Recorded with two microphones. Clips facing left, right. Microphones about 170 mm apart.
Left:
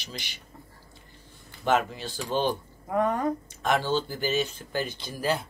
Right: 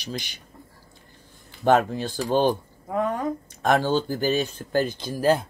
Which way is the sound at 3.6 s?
40° right (ahead or behind).